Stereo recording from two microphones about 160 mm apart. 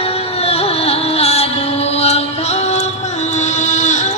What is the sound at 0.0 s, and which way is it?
Music, 40° left (ahead or behind).